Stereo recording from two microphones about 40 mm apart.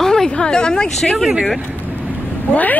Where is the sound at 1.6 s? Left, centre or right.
Right.